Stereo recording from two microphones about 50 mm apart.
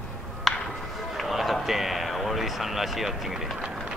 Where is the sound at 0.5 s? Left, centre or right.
Centre.